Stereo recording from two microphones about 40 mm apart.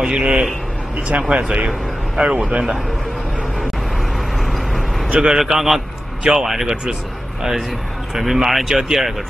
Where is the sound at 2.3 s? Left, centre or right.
Right.